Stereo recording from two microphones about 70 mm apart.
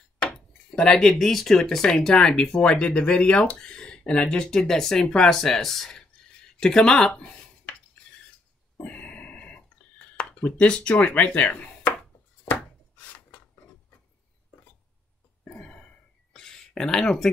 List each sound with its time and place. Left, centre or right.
0.2 s dishes: centre
0.9 s speech: centre
8.8 s grunt: centre
10.1 s speech: centre
15.4 s a sound: centre